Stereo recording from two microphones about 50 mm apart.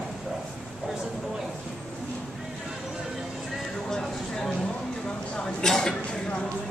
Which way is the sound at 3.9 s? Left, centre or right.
Centre.